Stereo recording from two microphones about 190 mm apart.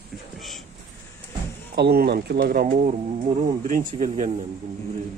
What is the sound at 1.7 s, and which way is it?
Speech, 55° right (ahead or behind).